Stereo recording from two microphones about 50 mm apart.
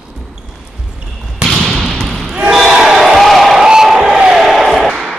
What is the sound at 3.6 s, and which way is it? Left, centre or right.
Crowd, centre.